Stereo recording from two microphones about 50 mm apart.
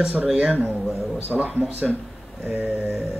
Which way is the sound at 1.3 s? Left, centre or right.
Right.